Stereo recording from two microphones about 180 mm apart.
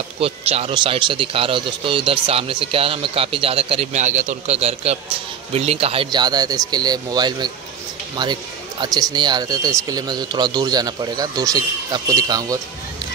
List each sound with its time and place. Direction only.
0.2 s a man's voice: 35° right (ahead or behind)
8.8 s speech: 25° right (ahead or behind)